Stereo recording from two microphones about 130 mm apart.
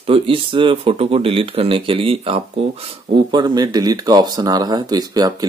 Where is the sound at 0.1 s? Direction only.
40° right (ahead or behind).